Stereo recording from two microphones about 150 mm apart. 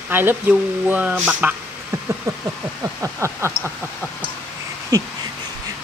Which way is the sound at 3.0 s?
20° right (ahead or behind).